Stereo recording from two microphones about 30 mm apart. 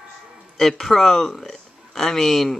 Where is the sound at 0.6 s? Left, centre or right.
Centre.